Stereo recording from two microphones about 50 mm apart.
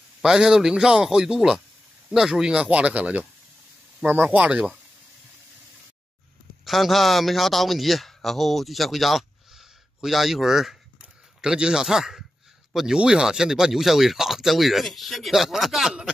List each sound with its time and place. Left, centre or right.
0.2 s speech: centre; by 3.3 s right
4.3 s speech: right
6.6 s a man's voice: centre
11.0 s a sound: centre
12.9 s speech: centre